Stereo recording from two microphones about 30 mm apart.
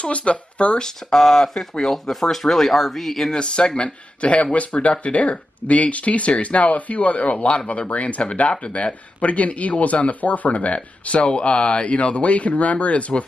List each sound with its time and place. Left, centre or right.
0.0 s speech: left
1.1 s speech: centre
3.3 s speech: left